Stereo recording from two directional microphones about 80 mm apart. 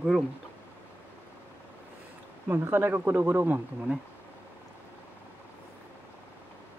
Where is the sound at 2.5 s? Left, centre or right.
Right.